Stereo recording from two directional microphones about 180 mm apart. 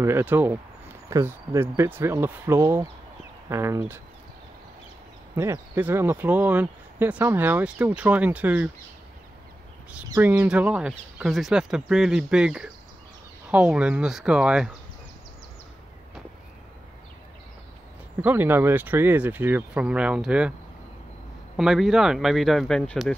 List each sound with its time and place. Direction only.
0.0 s speech: 10° right (ahead or behind)
5.3 s speech: 15° right (ahead or behind)
10.0 s speech: 15° right (ahead or behind)
18.2 s speech: 10° right (ahead or behind)
21.5 s speech: centre (ahead or behind)